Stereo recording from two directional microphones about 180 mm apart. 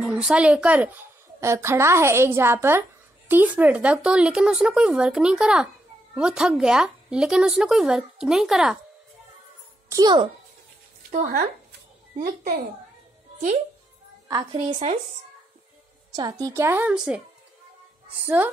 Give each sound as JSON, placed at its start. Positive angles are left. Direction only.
{"t": 0.0, "sound": "a woman's voice", "side_deg": -5}
{"t": 9.8, "sound": "a child's voice", "side_deg": -20}
{"t": 11.1, "sound": "speech", "side_deg": -45}
{"t": 14.5, "sound": "speech", "side_deg": -35}
{"t": 16.2, "sound": "a woman's voice", "side_deg": -20}
{"t": 18.2, "sound": "a woman's voice", "side_deg": -10}